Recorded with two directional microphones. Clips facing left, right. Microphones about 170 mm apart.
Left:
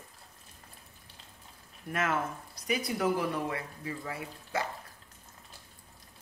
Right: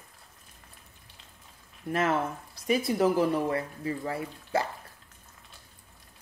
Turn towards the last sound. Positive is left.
turn(degrees=-35)  # may be behind; listen again after turning